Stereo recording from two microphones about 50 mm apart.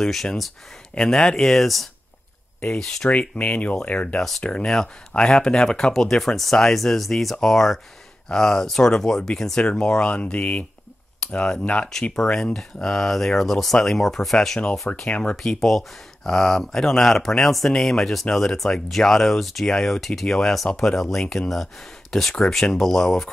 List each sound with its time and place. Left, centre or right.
0.0 s speech: centre
0.9 s speech: centre
3.1 s speech: left
11.2 s a sound: centre
11.6 s speech: left
11.9 s speech: centre
15.0 s speech: left
15.3 s speech: centre